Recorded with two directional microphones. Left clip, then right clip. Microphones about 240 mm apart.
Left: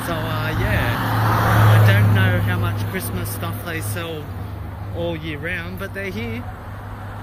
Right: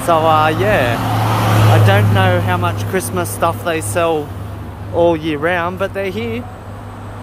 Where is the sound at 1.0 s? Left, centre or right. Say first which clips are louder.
Right 3 dB; right.